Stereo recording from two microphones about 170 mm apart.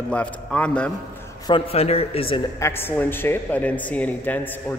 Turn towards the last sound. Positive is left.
turn(degrees=10)  # may be behind; listen again after turning